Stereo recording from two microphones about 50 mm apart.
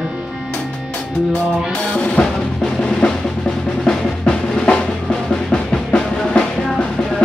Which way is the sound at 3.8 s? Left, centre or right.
Centre.